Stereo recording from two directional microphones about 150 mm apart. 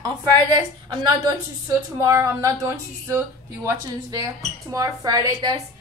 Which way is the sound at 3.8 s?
20° right (ahead or behind).